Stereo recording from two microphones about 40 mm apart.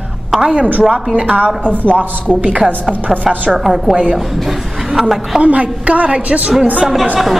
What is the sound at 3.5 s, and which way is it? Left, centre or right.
Speech, centre.